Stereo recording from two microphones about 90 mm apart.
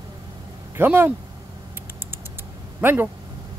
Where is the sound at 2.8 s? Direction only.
25° right (ahead or behind).